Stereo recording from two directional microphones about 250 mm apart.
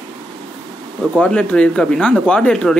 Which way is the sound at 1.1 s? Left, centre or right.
Centre.